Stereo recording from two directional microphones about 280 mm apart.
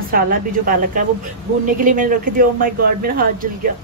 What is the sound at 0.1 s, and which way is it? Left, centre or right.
Speech, right.